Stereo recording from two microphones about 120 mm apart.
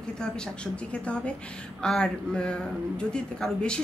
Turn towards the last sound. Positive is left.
turn(degrees=5)  # may be behind; listen again after turning